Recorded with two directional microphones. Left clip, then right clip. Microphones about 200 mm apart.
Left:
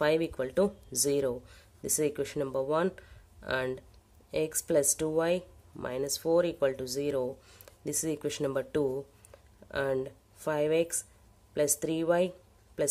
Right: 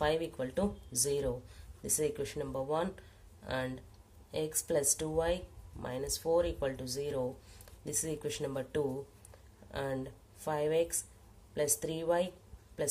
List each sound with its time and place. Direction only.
0.0 s speech: 40° left (ahead or behind)